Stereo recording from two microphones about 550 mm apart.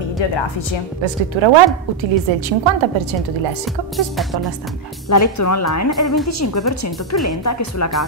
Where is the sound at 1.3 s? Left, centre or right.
Right.